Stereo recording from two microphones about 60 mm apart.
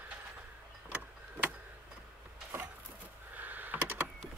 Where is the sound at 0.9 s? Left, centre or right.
Right.